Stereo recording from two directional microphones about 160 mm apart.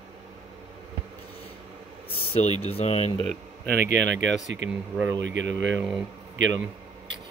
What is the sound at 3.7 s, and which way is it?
Speech, 90° right.